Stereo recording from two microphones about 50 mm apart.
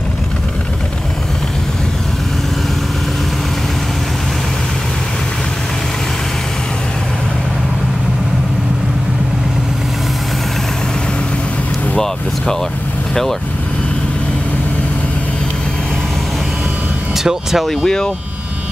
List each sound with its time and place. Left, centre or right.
13.1 s vehicle: centre
17.1 s vehicle: centre
17.6 s speech: centre